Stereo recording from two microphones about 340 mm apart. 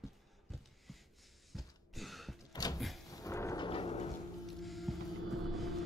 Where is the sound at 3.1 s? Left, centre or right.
Centre.